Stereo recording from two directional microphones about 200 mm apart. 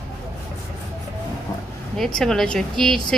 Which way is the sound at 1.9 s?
Centre (ahead or behind).